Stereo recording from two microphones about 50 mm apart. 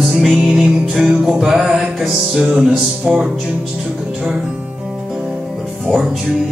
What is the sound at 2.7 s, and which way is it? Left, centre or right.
Music, centre.